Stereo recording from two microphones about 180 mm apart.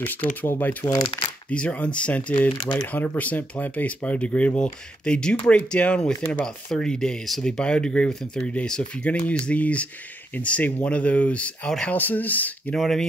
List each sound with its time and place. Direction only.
0.0 s speech: 10° left (ahead or behind)
0.8 s speech: 25° left (ahead or behind)
1.5 s speech: 5° left (ahead or behind)